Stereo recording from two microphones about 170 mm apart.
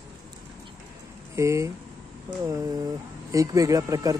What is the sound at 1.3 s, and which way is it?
Speech, 15° right (ahead or behind).